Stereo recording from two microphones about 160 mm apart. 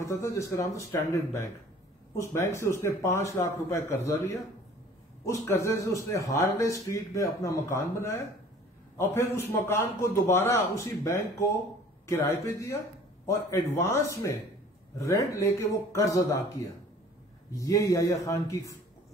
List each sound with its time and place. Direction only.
0.0 s speech: 20° left (ahead or behind)
2.1 s a man's voice: 15° left (ahead or behind)